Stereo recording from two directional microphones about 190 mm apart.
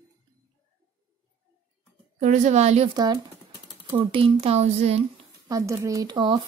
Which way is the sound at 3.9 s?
30° right (ahead or behind).